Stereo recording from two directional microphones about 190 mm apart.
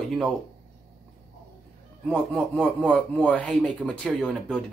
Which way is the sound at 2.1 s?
5° left (ahead or behind).